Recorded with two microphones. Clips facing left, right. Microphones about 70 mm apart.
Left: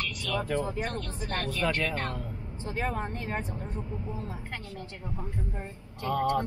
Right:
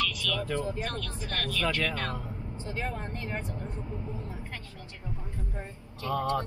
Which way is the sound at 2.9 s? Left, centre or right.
Left.